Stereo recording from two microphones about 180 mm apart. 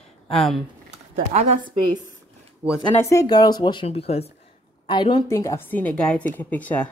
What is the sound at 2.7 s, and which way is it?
Speech, 15° left (ahead or behind).